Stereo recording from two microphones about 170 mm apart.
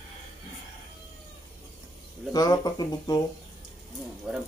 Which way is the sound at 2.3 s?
20° left (ahead or behind).